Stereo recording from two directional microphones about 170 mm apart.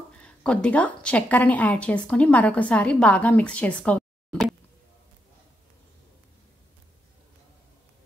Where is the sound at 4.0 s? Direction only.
Centre (ahead or behind).